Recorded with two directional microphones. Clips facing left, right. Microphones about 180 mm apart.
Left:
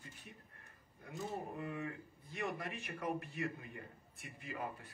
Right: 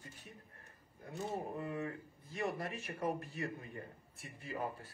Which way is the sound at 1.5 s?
35° right (ahead or behind).